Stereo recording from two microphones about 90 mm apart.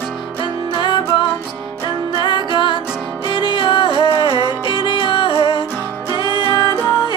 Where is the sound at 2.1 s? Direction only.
65° left (ahead or behind).